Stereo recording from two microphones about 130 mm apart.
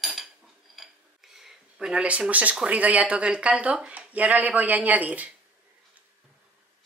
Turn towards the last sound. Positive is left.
turn(degrees=-10)  # may be behind; listen again after turning